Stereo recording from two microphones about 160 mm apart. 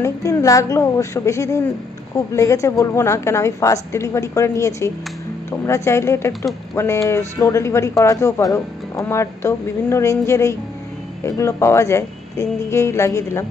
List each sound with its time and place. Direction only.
0.0 s a woman's voice: 20° left (ahead or behind)